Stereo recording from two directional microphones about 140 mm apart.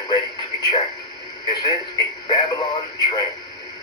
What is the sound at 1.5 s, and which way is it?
Speech, 30° left (ahead or behind).